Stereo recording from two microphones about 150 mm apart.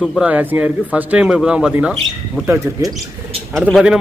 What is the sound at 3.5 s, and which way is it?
Speech, 5° right (ahead or behind).